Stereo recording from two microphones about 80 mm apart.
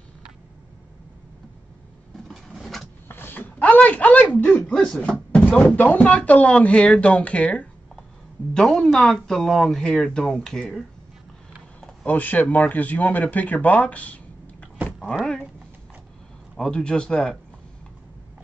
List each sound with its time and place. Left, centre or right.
2.2 s a sound: centre
3.1 s a sound: left
4.8 s speech: centre
8.5 s speech: centre
12.1 s speech: left
16.5 s speech: centre